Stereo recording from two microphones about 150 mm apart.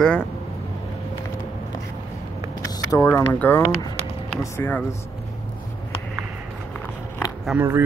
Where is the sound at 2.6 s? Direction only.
20° left (ahead or behind).